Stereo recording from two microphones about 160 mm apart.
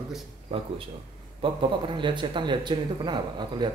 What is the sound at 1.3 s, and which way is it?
Speech, 30° right (ahead or behind).